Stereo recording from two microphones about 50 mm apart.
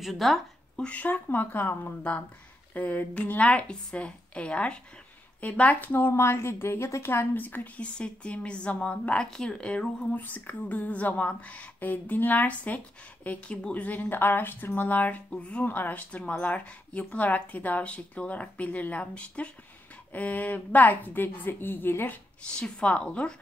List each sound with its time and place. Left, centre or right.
0.0 s a woman's voice: centre
0.8 s a woman's voice: left
5.9 s a woman's voice: left
7.2 s a woman's voice: left
9.3 s speech: centre
9.6 s a woman's voice: left
10.1 s a woman's voice: left
11.8 s a woman's voice: left
15.6 s a woman's voice: left
22.4 s a woman's voice: centre